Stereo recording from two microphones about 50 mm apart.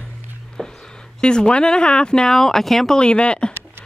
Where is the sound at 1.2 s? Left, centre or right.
Centre.